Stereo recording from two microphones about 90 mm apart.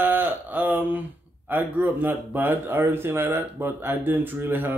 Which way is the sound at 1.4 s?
20° right (ahead or behind).